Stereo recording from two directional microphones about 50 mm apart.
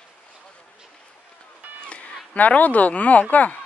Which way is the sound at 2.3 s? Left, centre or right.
Left.